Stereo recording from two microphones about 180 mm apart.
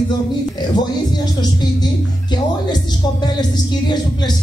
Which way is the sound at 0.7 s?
25° left (ahead or behind).